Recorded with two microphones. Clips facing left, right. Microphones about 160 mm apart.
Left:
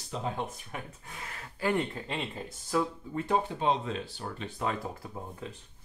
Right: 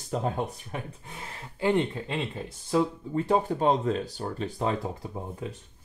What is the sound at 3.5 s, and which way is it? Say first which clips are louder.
Speech: right 5 dB; 45° right (ahead or behind).